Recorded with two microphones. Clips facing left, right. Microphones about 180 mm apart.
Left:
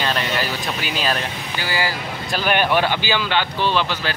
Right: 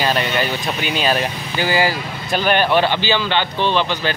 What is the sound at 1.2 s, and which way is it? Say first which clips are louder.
Speech: right 6 dB; 20° right (ahead or behind).